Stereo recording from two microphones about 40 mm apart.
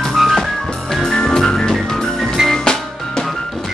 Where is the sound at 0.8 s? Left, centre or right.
Centre.